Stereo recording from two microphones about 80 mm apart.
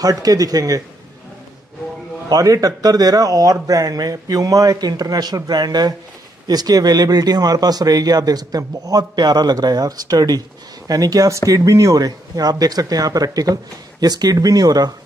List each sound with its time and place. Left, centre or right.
0.0 s speech: right
2.2 s speech: right